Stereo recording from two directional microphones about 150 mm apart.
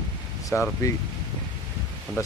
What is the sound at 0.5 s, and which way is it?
Speech, 15° left (ahead or behind).